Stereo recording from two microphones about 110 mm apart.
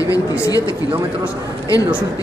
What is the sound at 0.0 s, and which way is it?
Speech, 30° left (ahead or behind).